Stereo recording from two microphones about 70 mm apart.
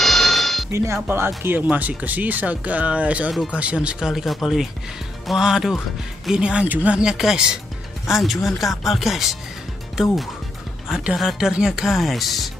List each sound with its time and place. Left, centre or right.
0.0 s telephone bell ringing: centre
0.7 s speech: right; by 4.1 s centre
4.1 s speech: centre